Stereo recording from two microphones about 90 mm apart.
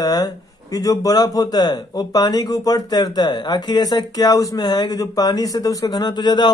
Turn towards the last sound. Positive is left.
turn(degrees=55)  # may be behind; listen again after turning